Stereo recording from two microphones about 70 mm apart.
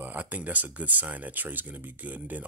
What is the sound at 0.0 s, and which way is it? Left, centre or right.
Speech, right.